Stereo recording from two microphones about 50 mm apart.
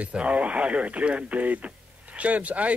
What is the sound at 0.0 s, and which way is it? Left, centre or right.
Speech, right.